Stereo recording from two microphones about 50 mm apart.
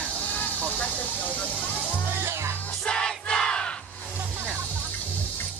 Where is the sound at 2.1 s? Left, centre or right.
Right.